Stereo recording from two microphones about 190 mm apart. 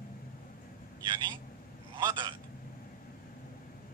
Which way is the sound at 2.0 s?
25° right (ahead or behind).